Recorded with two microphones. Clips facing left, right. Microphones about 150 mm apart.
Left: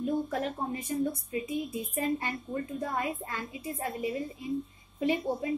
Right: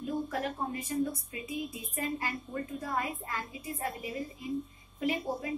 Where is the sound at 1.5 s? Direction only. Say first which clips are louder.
Left 5 dB; 25° left (ahead or behind).